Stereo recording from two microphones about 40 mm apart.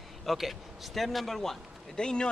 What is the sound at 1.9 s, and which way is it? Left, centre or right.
Speech, left.